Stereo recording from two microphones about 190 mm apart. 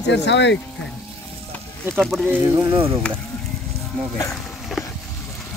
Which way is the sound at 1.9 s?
Centre (ahead or behind).